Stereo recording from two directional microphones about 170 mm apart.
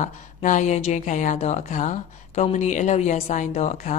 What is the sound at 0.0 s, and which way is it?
Speech, 45° left (ahead or behind).